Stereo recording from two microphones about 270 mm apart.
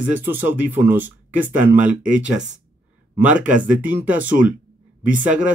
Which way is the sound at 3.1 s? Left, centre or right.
Centre.